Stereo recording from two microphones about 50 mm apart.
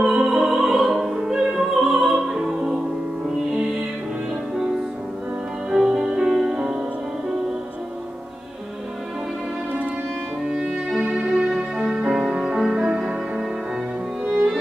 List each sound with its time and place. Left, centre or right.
0.0 s opera: centre
0.9 s music: centre
5.7 s music: centre
10.5 s music: centre
11.0 s music: right
12.1 s music: centre